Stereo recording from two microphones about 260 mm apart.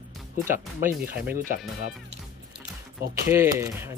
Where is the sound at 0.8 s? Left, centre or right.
Centre.